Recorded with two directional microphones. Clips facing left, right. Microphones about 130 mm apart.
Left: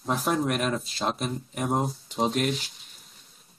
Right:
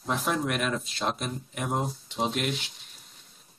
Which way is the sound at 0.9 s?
Centre (ahead or behind).